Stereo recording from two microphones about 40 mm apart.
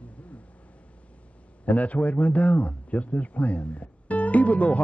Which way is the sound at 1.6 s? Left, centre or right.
Left.